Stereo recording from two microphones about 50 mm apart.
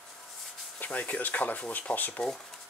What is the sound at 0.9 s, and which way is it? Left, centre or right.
Speech, left.